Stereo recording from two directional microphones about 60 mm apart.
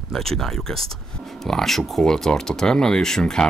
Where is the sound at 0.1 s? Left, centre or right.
Centre.